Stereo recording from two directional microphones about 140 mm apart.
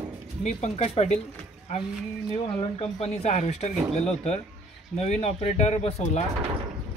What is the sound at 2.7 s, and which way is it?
A man's voice, 45° left (ahead or behind).